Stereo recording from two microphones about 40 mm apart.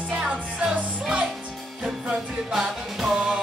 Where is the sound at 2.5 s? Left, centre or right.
Centre.